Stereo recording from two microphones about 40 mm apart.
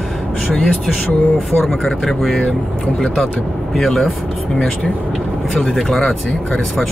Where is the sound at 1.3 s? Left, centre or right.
Centre.